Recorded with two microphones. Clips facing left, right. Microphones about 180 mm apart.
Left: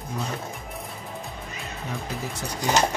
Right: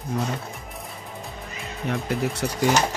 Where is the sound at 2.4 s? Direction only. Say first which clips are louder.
Right 6 dB; 65° right (ahead or behind).